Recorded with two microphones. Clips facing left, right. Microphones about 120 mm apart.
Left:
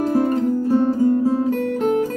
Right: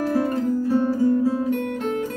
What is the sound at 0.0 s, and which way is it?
Music, 25° left (ahead or behind).